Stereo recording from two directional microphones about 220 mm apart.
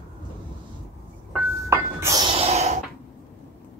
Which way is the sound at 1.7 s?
15° right (ahead or behind).